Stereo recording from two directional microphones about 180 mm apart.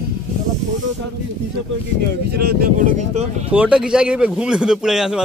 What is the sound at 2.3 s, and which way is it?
Speech, 65° right (ahead or behind).